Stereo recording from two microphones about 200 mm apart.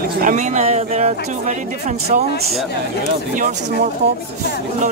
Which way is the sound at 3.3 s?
40° right (ahead or behind).